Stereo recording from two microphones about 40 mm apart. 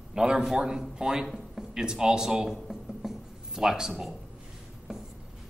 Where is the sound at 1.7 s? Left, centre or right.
Centre.